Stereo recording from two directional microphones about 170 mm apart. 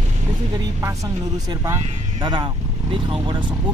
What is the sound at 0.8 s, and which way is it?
Speech, 20° right (ahead or behind).